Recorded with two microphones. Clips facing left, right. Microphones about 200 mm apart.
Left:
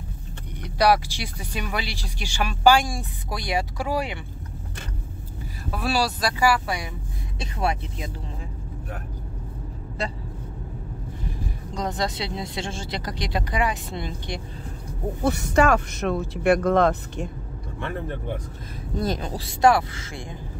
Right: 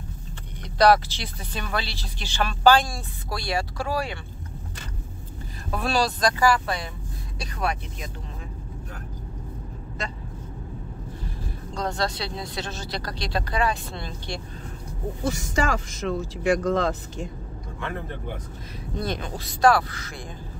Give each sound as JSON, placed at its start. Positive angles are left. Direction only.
{"t": 0.7, "sound": "speech", "side_deg": 10}
{"t": 5.7, "sound": "speech", "side_deg": 5}
{"t": 7.3, "sound": "speech", "side_deg": 25}
{"t": 11.7, "sound": "speech", "side_deg": 15}
{"t": 15.2, "sound": "speech", "side_deg": 60}
{"t": 18.9, "sound": "speech", "side_deg": 40}